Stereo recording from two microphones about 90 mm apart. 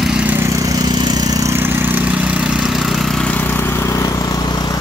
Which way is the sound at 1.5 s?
25° right (ahead or behind).